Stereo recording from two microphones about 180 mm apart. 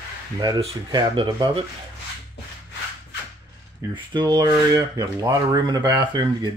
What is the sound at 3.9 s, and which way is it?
Rub, 25° right (ahead or behind).